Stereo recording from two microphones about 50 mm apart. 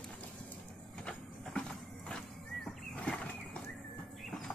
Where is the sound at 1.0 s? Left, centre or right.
Centre.